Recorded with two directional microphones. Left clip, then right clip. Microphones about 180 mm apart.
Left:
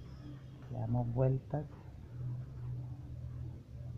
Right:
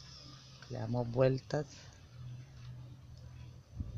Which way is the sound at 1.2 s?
60° right (ahead or behind).